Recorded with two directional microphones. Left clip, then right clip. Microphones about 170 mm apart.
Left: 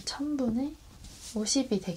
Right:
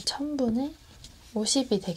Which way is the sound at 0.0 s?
20° right (ahead or behind).